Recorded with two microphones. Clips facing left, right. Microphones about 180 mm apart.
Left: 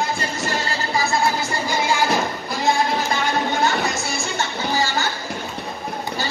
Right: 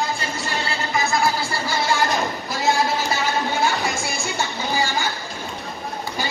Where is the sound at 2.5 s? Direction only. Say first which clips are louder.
Left 1 dB; centre (ahead or behind).